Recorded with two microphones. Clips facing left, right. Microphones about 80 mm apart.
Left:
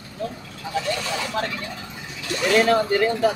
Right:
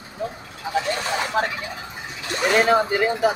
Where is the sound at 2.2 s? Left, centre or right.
Right.